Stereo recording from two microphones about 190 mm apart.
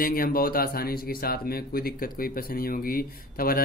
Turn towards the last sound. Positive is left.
turn(degrees=50)  # may be behind; listen again after turning